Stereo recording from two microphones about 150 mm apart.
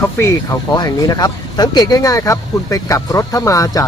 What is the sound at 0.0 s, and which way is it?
Speech, 20° left (ahead or behind).